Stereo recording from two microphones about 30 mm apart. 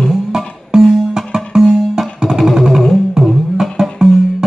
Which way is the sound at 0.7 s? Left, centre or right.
Right.